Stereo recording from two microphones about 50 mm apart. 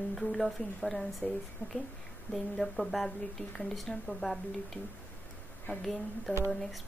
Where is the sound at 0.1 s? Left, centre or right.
Centre.